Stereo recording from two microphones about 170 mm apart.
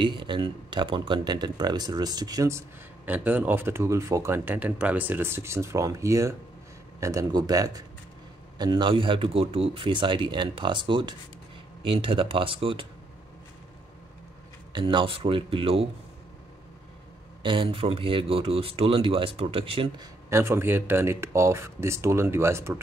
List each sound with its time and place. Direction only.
0.0 s speech: 30° right (ahead or behind)
14.7 s speech: 30° right (ahead or behind)
17.4 s speech: 30° right (ahead or behind)
20.2 s speech: 15° right (ahead or behind)